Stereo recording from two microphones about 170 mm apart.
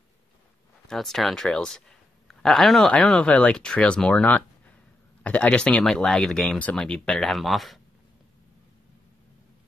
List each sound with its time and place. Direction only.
0.8 s speech: centre (ahead or behind)